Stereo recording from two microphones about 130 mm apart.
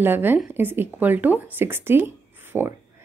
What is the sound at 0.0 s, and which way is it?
Speech, 15° right (ahead or behind).